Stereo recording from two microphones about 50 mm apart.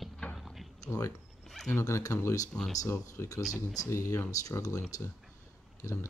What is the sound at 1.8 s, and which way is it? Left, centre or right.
Speech, left.